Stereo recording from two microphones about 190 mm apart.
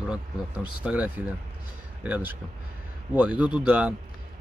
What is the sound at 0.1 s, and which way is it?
Speech, 5° right (ahead or behind).